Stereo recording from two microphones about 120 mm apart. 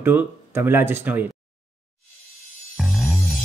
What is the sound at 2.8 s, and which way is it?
Music, centre (ahead or behind).